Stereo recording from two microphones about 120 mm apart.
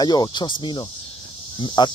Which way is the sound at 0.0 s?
35° left (ahead or behind).